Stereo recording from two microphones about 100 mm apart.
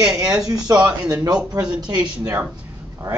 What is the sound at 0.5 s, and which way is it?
Speech, 40° right (ahead or behind).